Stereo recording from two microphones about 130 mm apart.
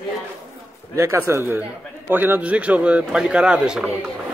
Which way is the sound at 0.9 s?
25° right (ahead or behind).